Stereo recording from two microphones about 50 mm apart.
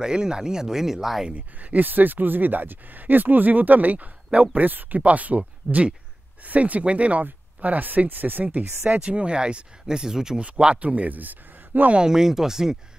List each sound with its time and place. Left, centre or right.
0.0 s speech: centre
1.3 s speech: right
9.0 s speech: right
10.8 s speech: right
11.9 s speech: centre